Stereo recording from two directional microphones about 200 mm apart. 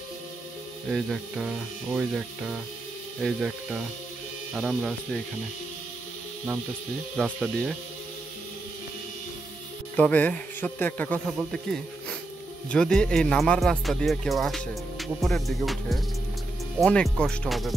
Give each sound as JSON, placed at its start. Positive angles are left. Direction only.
{"t": 0.8, "sound": "speech", "side_deg": 0}
{"t": 7.2, "sound": "speech", "side_deg": -5}
{"t": 9.9, "sound": "a man's voice", "side_deg": 5}